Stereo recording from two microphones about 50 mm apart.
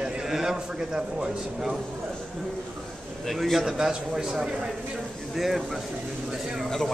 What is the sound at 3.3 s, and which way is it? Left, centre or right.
A man's voice, centre.